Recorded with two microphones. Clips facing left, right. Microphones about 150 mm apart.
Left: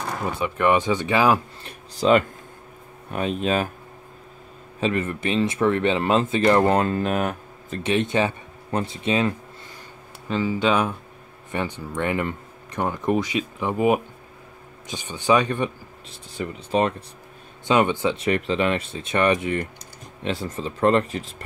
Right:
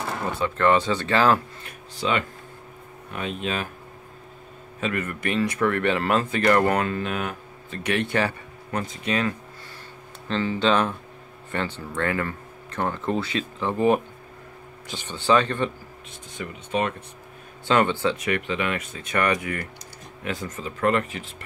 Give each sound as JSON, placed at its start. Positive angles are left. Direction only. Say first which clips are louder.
{"t": 0.2, "sound": "speech", "louder": "even", "side_deg": 15}
{"t": 1.6, "sound": "speech", "louder": "left 6 dB", "side_deg": 35}
{"t": 4.7, "sound": "speech", "louder": "left 4 dB", "side_deg": 30}
{"t": 7.8, "sound": "speech", "louder": "left 2 dB", "side_deg": 20}
{"t": 10.2, "sound": "speech", "louder": "left 1 dB", "side_deg": 10}
{"t": 16.1, "sound": "speech", "louder": "left 5 dB", "side_deg": 35}
{"t": 17.6, "sound": "speech", "louder": "left 1 dB", "side_deg": 15}
{"t": 18.1, "sound": "speech", "louder": "left 4 dB", "side_deg": 30}